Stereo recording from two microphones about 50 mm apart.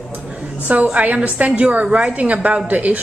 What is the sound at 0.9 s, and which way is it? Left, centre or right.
A woman's voice, right.